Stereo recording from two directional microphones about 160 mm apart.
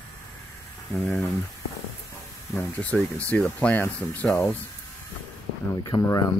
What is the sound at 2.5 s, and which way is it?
Speech, 10° left (ahead or behind).